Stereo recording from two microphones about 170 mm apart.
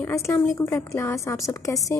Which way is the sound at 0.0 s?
15° left (ahead or behind).